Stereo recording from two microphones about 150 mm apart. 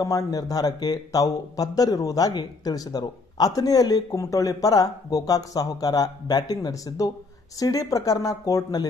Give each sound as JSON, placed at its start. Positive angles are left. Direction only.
{"t": 0.0, "sound": "speech", "side_deg": 25}